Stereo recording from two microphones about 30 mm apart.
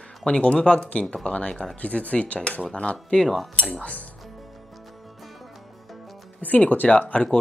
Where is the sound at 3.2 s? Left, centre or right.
Centre.